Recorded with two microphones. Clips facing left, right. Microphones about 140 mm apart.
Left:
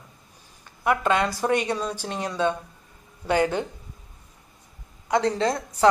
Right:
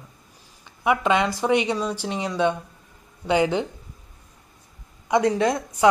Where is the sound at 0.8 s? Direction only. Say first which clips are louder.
Right 2 dB; 10° right (ahead or behind).